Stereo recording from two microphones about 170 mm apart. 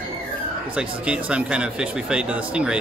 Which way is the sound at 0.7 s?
5° right (ahead or behind).